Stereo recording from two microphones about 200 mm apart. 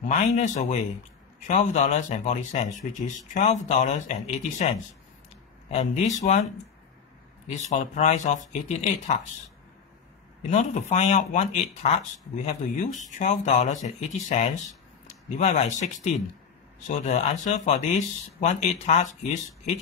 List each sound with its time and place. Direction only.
0.1 s speech: 35° left (ahead or behind)
5.7 s speech: 35° left (ahead or behind)
7.4 s speech: 35° left (ahead or behind)
10.5 s speech: 35° left (ahead or behind)